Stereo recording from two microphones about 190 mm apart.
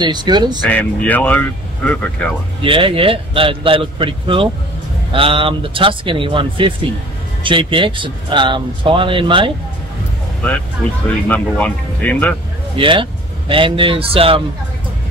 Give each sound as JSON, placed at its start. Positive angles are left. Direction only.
{"t": 0.0, "sound": "speech", "side_deg": -25}
{"t": 0.7, "sound": "speech", "side_deg": 10}
{"t": 2.6, "sound": "speech", "side_deg": -30}
{"t": 11.2, "sound": "speech", "side_deg": 10}
{"t": 12.7, "sound": "speech", "side_deg": -25}